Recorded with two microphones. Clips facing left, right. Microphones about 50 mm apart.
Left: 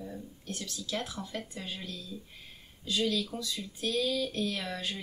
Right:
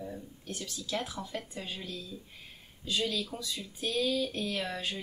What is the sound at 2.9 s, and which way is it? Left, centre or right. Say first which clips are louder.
A woman's voice: left 2 dB; right.